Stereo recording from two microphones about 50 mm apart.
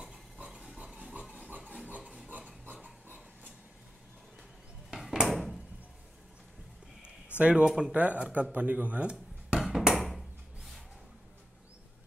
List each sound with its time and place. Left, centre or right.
0.0 s pig: centre
1.5 s rub: right
2.2 s a sound: right
4.9 s a sound: centre
5.3 s door: centre
7.3 s speech: right
7.6 s speech: centre
7.9 s speech: right
9.6 s ping: centre
9.9 s a sound: centre